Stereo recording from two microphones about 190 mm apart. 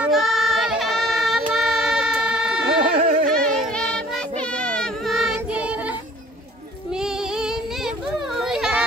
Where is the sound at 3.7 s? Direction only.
5° left (ahead or behind).